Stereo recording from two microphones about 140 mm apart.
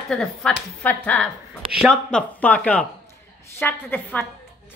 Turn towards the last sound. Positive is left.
turn(degrees=15)  # may be behind; listen again after turning